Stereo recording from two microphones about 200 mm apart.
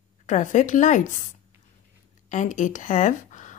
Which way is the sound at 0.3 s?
40° left (ahead or behind).